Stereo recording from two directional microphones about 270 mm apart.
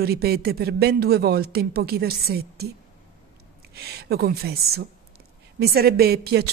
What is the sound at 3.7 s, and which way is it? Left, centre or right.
Speech, right.